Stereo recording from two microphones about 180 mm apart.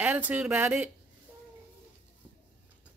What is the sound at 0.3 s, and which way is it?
Speech, 5° right (ahead or behind).